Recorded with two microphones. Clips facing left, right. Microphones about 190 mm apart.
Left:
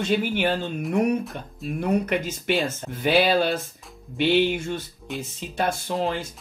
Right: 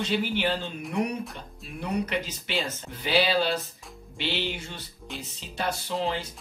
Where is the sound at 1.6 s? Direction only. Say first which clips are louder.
Left 7 dB; 50° left (ahead or behind).